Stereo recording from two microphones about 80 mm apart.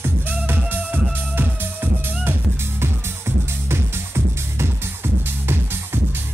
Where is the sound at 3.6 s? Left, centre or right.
Right.